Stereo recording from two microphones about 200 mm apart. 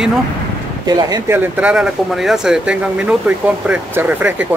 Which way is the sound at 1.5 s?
5° right (ahead or behind).